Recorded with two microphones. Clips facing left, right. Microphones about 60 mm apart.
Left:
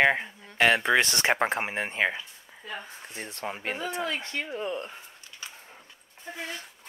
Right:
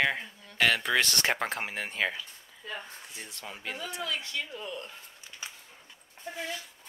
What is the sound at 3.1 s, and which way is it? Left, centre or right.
Speech, left.